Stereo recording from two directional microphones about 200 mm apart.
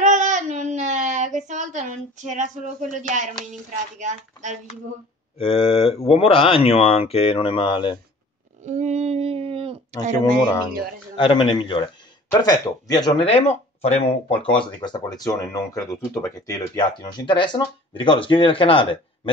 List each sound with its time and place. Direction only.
0.0 s child singing: 35° right (ahead or behind)
4.0 s a woman's voice: 40° right (ahead or behind)
5.4 s speech: 30° left (ahead or behind)
8.6 s a sound: 35° right (ahead or behind)
11.1 s speech: 25° left (ahead or behind)